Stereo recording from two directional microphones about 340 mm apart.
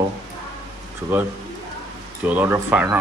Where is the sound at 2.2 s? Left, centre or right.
Centre.